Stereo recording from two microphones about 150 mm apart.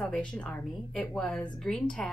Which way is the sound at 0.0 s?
5° left (ahead or behind).